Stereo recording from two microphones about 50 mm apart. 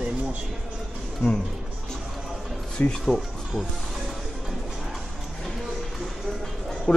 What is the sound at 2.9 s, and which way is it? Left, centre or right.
Speech, centre.